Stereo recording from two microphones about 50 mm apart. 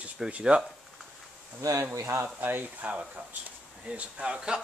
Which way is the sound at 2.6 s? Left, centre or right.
Right.